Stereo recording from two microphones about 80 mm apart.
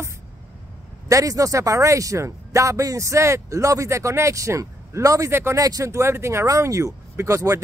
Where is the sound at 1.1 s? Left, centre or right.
Right.